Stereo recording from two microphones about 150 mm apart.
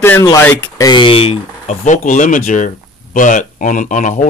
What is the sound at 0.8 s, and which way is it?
Speech, 35° left (ahead or behind).